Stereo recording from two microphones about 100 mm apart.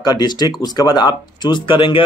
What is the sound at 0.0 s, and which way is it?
Speech, 45° left (ahead or behind).